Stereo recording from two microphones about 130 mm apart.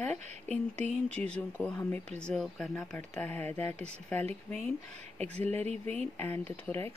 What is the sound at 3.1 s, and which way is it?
Speech, 15° left (ahead or behind).